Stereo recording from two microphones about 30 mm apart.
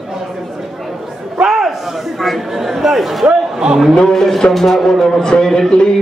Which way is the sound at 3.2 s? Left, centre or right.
Right.